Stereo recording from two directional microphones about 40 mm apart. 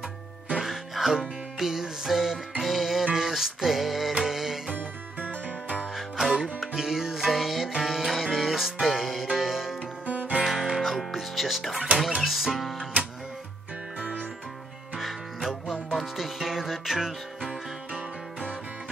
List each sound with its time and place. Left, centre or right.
0.7 s music: centre
5.9 s music: centre
10.0 s music: right
10.4 s music: centre
15.0 s music: centre